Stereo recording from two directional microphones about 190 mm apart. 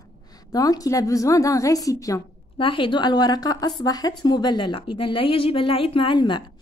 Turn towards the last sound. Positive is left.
turn(degrees=25)  # may be behind; listen again after turning